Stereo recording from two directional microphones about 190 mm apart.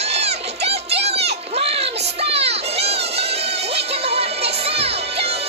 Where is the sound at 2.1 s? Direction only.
30° right (ahead or behind).